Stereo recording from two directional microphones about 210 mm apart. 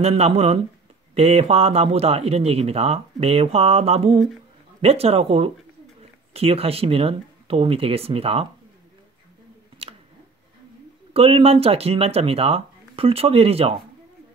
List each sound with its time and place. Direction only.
0.0 s a man's voice: 30° right (ahead or behind)
11.1 s a man's voice: 25° right (ahead or behind)